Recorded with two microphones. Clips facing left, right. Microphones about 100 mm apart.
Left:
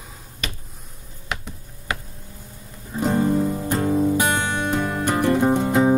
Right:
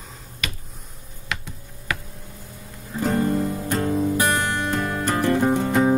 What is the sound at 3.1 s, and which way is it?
Music, 5° left (ahead or behind).